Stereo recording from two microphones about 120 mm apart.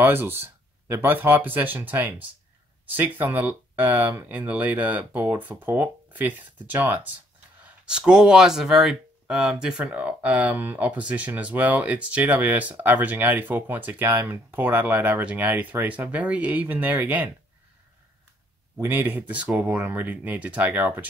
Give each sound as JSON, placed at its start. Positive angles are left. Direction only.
{"t": 0.0, "sound": "speech", "side_deg": -15}
{"t": 18.8, "sound": "speech", "side_deg": -15}